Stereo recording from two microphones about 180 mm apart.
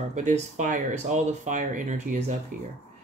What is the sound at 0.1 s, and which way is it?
Speech, 40° right (ahead or behind).